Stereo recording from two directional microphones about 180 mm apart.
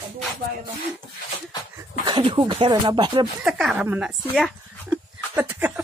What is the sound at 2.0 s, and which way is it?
Speech, 25° right (ahead or behind).